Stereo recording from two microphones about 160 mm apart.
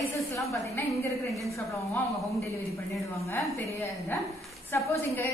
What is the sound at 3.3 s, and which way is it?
A woman's voice, 15° left (ahead or behind).